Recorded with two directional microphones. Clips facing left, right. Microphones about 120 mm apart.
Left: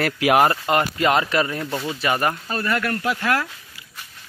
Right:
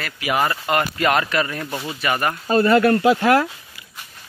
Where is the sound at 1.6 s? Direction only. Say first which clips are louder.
Left 2 dB; 10° right (ahead or behind).